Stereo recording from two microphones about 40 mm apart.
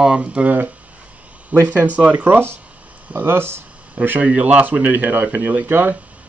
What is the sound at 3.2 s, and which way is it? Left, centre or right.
Speech, right.